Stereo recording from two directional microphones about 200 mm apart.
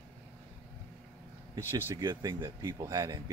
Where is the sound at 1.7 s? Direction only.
15° right (ahead or behind).